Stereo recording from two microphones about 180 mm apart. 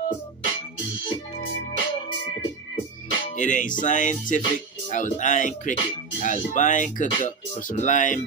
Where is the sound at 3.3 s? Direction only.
45° left (ahead or behind).